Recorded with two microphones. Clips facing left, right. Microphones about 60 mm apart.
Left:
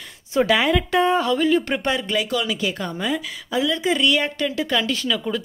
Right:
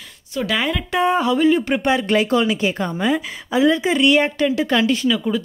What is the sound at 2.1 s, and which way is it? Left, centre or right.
A woman's voice, right.